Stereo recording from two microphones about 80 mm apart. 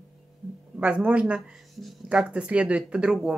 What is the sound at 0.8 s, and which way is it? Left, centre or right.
Speech, centre.